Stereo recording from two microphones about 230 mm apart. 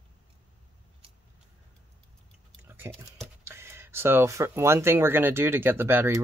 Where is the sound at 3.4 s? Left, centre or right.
Centre.